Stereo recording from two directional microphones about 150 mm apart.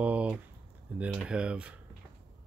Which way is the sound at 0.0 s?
10° right (ahead or behind).